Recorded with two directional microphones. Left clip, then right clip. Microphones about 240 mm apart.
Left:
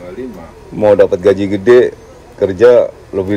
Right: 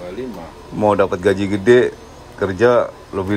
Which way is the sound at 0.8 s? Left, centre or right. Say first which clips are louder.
Left 7 dB; right.